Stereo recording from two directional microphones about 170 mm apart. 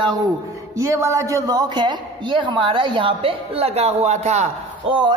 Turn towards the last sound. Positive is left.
turn(degrees=-30)  # may be behind; listen again after turning